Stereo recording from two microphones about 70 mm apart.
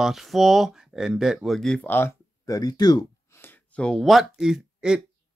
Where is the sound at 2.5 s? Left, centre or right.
Left.